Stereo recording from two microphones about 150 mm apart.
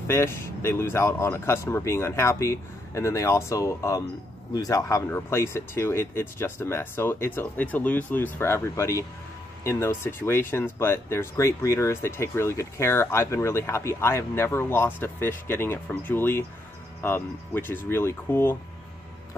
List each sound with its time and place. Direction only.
0.1 s speech: 15° left (ahead or behind)